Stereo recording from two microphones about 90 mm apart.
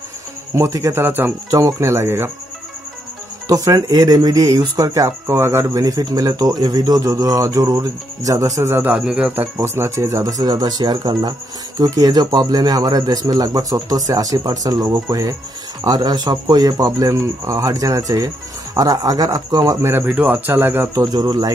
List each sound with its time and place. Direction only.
0.6 s speech: 40° right (ahead or behind)
1.0 s speech: 25° right (ahead or behind)
1.5 s speech: 40° right (ahead or behind)
3.4 s speech: 40° right (ahead or behind)
5.7 s speech: 45° right (ahead or behind)
8.8 s speech: 15° right (ahead or behind)
9.3 s speech: 25° right (ahead or behind); by 19.9 s 40° right (ahead or behind)
19.9 s speech: 20° right (ahead or behind)
20.9 s speech: 45° right (ahead or behind)